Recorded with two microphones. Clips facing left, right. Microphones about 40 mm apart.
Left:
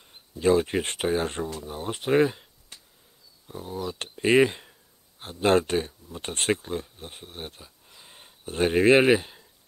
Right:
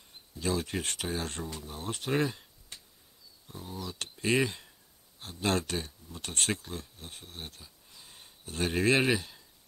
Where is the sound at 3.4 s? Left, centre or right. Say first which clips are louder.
Left 8 dB; left.